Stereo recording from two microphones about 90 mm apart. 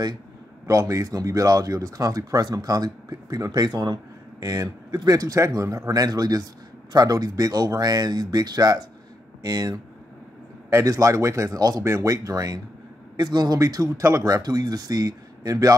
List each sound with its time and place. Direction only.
0.7 s speech: 35° right (ahead or behind)